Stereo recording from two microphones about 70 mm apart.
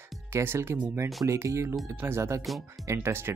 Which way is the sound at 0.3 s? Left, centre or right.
Right.